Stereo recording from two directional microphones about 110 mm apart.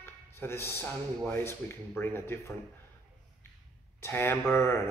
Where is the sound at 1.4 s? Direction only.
20° left (ahead or behind).